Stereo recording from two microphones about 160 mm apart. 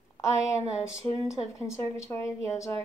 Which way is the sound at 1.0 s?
20° left (ahead or behind).